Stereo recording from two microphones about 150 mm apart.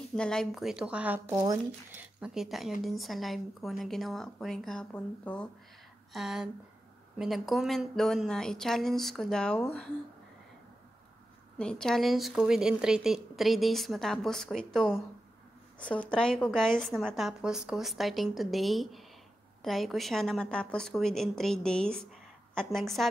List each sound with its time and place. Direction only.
0.1 s speech: 5° left (ahead or behind)
6.1 s speech: 5° right (ahead or behind)
11.5 s speech: 5° left (ahead or behind)